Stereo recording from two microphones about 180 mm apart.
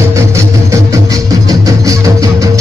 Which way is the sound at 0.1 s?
15° right (ahead or behind).